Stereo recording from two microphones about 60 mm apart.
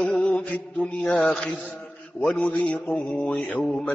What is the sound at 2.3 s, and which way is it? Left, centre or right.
Mantra, left.